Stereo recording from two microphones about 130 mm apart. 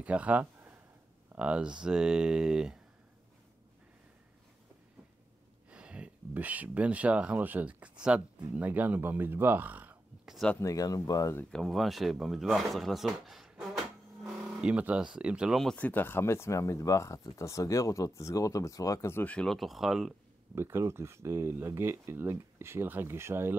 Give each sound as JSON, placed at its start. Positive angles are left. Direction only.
{"t": 0.0, "sound": "speech", "side_deg": -10}
{"t": 5.7, "sound": "speech", "side_deg": -10}
{"t": 10.3, "sound": "speech", "side_deg": 5}
{"t": 10.6, "sound": "speech", "side_deg": 25}
{"t": 11.5, "sound": "speech", "side_deg": 0}
{"t": 20.5, "sound": "speech", "side_deg": -20}